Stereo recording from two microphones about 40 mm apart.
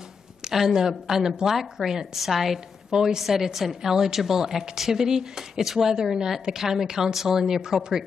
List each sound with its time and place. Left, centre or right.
0.4 s a woman's voice: centre
2.9 s a woman's voice: centre